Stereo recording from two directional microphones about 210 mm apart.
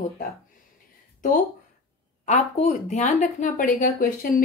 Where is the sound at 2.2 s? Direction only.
30° left (ahead or behind).